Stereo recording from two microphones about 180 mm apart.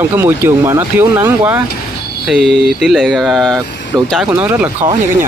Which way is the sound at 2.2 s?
Centre (ahead or behind).